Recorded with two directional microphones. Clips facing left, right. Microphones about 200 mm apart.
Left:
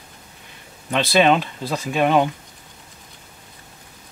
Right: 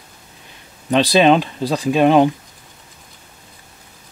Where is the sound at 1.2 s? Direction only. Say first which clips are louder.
Right 4 dB; 25° right (ahead or behind).